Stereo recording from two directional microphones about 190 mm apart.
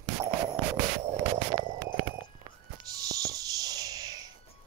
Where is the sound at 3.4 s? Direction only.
20° right (ahead or behind).